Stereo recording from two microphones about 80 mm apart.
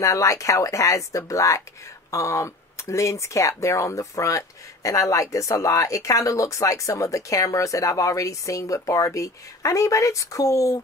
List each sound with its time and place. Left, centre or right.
0.0 s speech: left